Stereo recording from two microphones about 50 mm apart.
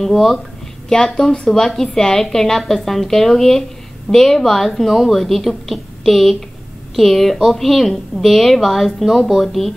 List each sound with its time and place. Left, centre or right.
0.0 s a woman's voice: centre
0.8 s a woman's voice: centre